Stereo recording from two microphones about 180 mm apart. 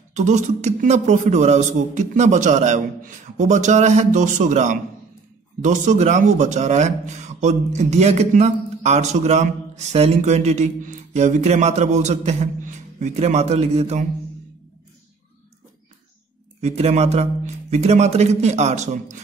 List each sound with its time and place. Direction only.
0.1 s speech: 40° right (ahead or behind)
16.6 s speech: 35° right (ahead or behind)